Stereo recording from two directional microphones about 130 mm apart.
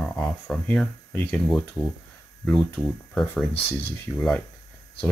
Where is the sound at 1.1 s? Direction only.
15° left (ahead or behind).